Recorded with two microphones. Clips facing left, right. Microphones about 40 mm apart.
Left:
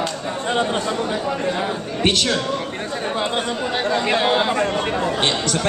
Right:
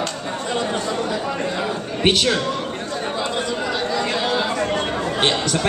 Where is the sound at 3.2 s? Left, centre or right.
Left.